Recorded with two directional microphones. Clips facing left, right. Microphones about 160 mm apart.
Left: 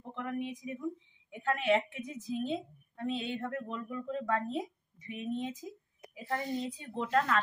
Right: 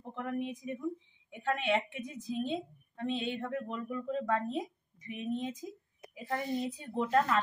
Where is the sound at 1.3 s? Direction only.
Centre (ahead or behind).